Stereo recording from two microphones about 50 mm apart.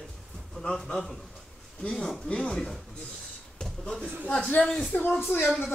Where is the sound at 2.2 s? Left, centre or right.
Centre.